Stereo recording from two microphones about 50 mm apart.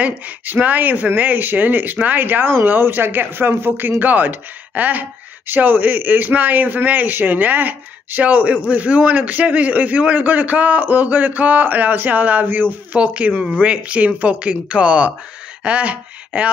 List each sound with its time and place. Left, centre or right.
0.0 s a man's voice: right
12.9 s speech: right